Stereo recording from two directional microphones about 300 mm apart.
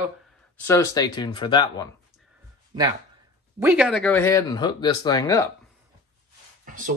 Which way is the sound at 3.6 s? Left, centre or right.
Centre.